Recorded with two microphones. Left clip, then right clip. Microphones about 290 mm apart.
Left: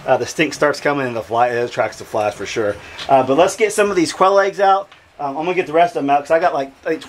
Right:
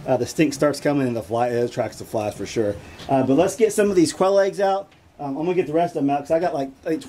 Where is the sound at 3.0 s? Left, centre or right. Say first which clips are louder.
Left 6 dB; left.